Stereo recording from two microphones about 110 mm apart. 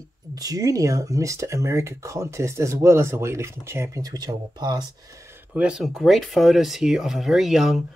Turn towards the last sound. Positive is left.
turn(degrees=-5)  # may be behind; listen again after turning